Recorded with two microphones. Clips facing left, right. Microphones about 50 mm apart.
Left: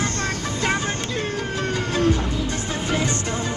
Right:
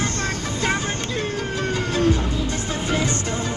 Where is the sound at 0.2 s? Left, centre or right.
Left.